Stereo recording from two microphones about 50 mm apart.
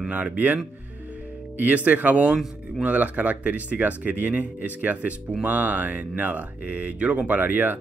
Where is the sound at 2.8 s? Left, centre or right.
Right.